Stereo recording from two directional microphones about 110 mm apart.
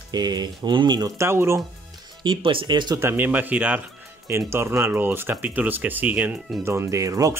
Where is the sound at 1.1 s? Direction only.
25° right (ahead or behind).